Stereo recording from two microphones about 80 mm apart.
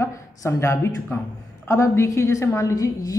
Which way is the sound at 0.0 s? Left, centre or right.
Left.